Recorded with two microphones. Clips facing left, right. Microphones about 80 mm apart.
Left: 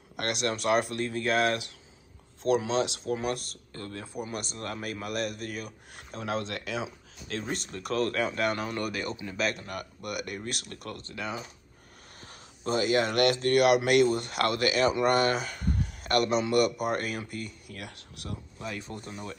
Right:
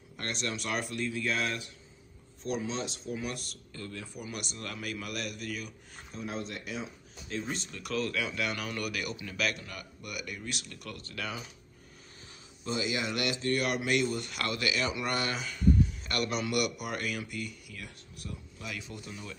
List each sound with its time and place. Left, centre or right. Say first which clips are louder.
0.1 s speech: left 6 dB; left
2.4 s speech: left 8 dB; left
3.2 s speech: left 6 dB; left
5.9 s speech: left 5 dB; left
7.7 s speech: left 5 dB; left
8.5 s speech: left 4 dB; left
9.8 s speech: left 6 dB; left
11.1 s speech: left 3 dB; left
12.3 s speech: left 6 dB; left
16.3 s speech: left 4 dB; left
17.7 s speech: left 4 dB; left
18.6 s speech: left 4 dB; left